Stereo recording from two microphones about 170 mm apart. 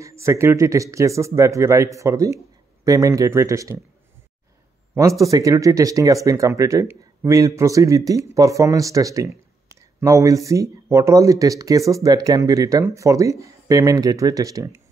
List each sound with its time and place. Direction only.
0.0 s speech: 15° right (ahead or behind)
4.9 s speech: 20° right (ahead or behind)